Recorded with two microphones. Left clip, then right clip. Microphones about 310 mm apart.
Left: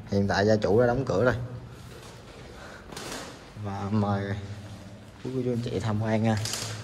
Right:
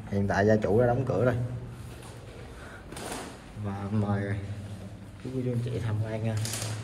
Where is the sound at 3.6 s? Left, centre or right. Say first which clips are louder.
Left 4 dB; centre.